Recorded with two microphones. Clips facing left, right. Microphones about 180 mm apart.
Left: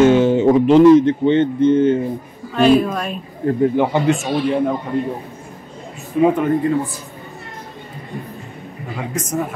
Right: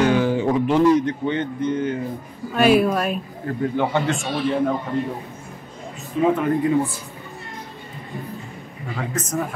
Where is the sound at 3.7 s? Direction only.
15° left (ahead or behind).